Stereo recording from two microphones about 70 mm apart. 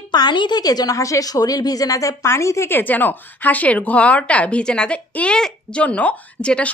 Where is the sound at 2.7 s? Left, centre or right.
Left.